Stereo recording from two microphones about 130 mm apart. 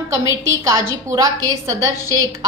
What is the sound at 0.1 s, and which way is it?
A woman's voice, 20° right (ahead or behind).